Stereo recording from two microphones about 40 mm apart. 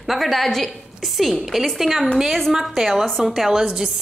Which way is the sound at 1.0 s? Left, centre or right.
Centre.